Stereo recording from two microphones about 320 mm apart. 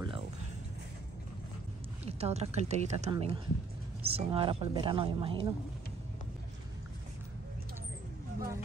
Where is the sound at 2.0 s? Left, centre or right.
Centre.